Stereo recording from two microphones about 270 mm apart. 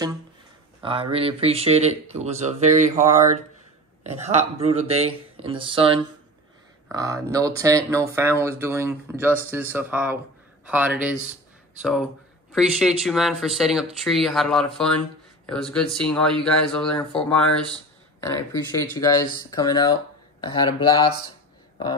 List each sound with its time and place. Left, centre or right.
0.7 s speech: centre